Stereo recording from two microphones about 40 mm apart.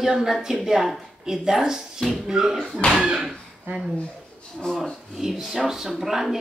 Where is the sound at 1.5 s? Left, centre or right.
Centre.